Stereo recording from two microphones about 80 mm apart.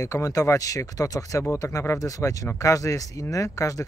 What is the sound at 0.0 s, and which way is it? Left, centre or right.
Speech, left.